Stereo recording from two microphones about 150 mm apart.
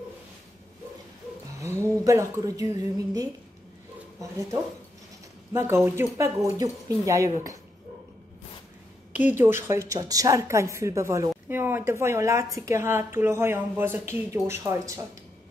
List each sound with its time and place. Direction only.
1.6 s speech: 20° right (ahead or behind)
5.5 s speech: 15° right (ahead or behind)
9.1 s a woman's voice: 10° right (ahead or behind)